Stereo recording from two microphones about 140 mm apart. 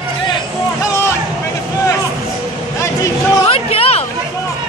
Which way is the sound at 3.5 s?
45° left (ahead or behind).